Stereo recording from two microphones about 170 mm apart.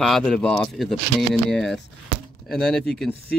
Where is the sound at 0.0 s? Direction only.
Centre (ahead or behind).